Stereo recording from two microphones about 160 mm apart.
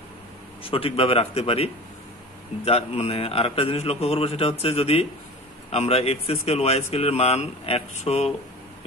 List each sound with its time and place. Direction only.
0.7 s speech: 35° left (ahead or behind)